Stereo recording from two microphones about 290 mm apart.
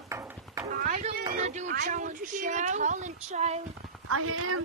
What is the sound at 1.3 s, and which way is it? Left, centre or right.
Speech, right.